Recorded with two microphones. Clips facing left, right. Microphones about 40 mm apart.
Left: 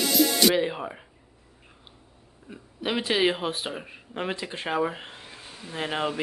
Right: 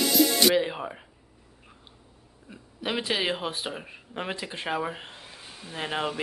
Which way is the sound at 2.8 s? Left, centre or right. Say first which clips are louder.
Left 4 dB; centre.